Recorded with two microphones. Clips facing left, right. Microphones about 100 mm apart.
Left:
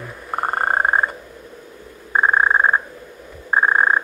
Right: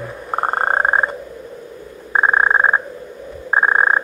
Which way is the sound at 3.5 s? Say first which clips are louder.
Right 1 dB; 15° right (ahead or behind).